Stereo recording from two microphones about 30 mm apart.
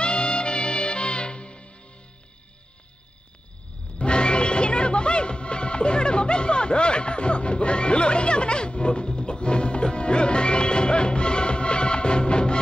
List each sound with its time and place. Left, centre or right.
0.0 s music: left
4.0 s music: left